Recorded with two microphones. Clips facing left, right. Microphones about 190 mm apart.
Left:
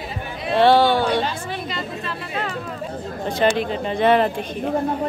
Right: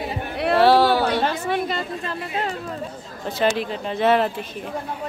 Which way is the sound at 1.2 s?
55° right (ahead or behind).